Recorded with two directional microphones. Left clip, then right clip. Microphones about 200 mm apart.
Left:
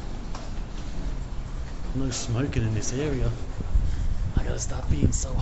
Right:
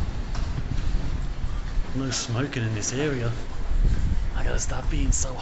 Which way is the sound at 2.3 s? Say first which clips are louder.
Right 1 dB; 30° left (ahead or behind).